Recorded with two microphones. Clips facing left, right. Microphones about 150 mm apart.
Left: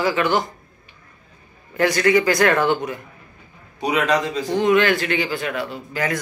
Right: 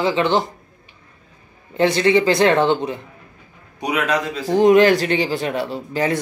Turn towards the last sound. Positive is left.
turn(degrees=-30)  # may be behind; listen again after turning